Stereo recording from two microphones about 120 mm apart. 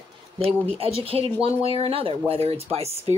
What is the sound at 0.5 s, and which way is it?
Speech, 55° right (ahead or behind).